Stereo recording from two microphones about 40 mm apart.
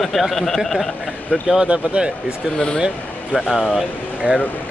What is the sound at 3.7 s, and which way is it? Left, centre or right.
Speech, right.